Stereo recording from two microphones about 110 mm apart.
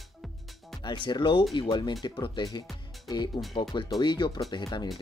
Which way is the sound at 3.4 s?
35° left (ahead or behind).